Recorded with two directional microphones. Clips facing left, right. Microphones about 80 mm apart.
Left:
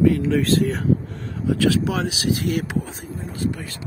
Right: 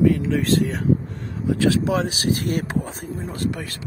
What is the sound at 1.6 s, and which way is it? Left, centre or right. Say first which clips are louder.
Speech: right 1 dB; right.